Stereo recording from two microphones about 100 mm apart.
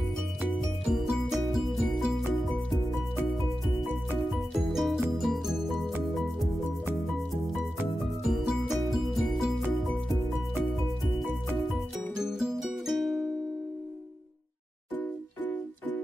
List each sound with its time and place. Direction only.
0.4 s music: 5° right (ahead or behind)
4.6 s music: 5° right (ahead or behind)
8.3 s music: centre (ahead or behind)
11.7 s music: 5° right (ahead or behind)
15.0 s music: 20° left (ahead or behind)